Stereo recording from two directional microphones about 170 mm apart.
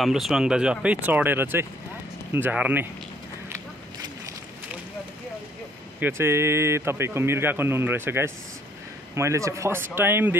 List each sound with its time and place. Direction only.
0.0 s a man's voice: centre (ahead or behind)
5.9 s a man's voice: 15° right (ahead or behind)